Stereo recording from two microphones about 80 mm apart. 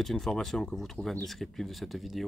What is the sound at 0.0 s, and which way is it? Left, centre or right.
Speech, centre.